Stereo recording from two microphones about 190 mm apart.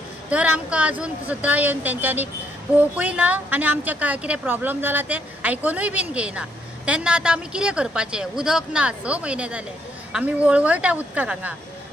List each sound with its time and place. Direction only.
0.3 s a woman's voice: 5° right (ahead or behind)